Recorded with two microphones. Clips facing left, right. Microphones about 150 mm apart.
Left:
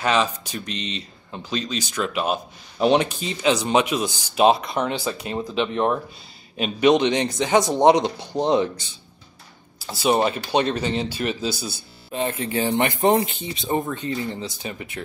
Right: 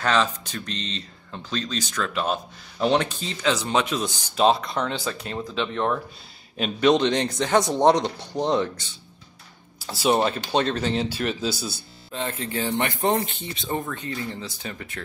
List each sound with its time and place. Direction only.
0.0 s speech: 10° left (ahead or behind)
9.8 s speech: 10° left (ahead or behind)
12.1 s speech: 15° left (ahead or behind)